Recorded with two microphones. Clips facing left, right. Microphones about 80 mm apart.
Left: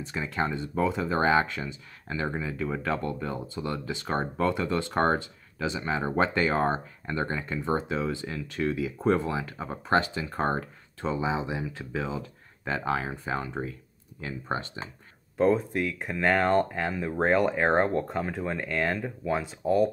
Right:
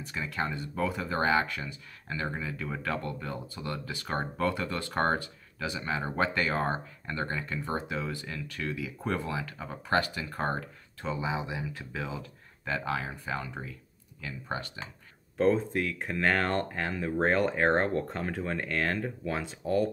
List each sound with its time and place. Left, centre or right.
0.0 s speech: left
15.3 s speech: centre